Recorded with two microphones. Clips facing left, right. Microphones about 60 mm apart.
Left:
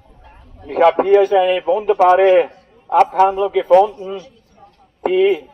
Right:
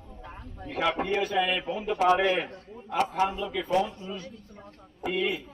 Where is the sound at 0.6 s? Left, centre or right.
Left.